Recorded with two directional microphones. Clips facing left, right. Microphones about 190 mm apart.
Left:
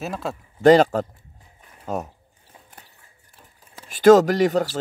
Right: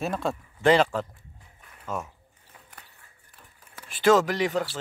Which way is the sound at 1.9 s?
35° left (ahead or behind).